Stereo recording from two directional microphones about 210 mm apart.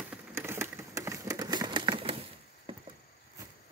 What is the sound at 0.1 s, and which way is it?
Typewriter, 10° right (ahead or behind).